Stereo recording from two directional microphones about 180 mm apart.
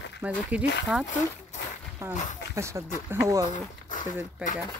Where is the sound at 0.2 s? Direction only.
10° right (ahead or behind).